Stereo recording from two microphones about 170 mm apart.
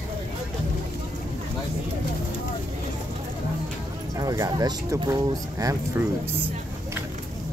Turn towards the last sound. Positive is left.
turn(degrees=-15)  # may be behind; listen again after turning